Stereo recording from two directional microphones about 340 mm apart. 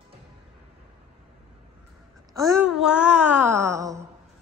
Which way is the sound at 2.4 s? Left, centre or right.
Centre.